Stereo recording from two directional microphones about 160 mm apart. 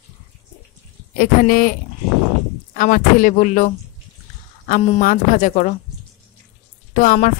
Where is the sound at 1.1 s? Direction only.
60° left (ahead or behind).